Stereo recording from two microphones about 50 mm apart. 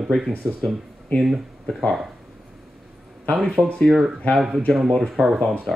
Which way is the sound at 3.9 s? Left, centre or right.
Centre.